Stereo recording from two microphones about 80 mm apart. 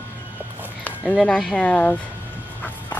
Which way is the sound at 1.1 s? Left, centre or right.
Centre.